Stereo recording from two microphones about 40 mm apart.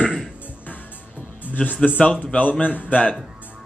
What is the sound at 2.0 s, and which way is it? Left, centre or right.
Speech, left.